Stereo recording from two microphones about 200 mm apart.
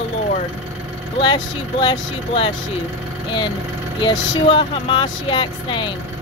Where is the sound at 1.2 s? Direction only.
25° left (ahead or behind).